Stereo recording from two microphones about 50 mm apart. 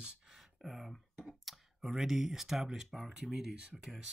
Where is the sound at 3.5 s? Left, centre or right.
Right.